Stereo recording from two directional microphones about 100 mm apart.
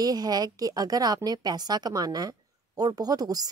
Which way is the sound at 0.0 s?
40° right (ahead or behind).